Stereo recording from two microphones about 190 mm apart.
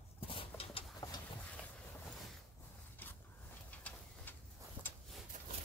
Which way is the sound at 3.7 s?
10° left (ahead or behind).